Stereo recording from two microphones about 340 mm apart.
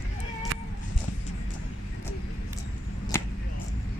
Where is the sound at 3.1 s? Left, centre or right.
Centre.